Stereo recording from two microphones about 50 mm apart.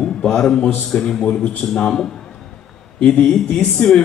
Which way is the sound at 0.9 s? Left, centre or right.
Centre.